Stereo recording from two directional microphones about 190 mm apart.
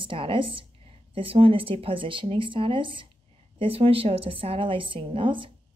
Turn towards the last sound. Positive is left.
turn(degrees=-25)  # may be behind; listen again after turning